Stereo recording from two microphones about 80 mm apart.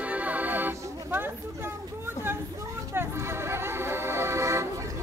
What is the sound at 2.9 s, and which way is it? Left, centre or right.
Music, right.